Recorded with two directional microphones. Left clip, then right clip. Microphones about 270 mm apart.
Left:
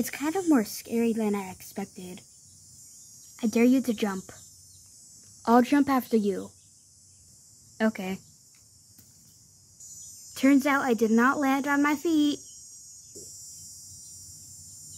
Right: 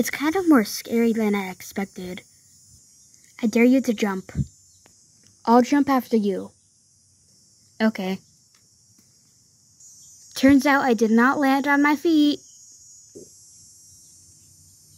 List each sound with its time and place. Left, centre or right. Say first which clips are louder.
0.0 s speech: right 7 dB; centre
3.3 s speech: right 5 dB; centre
5.4 s speech: right 4 dB; centre
7.7 s speech: right 4 dB; centre
10.3 s speech: right 6 dB; centre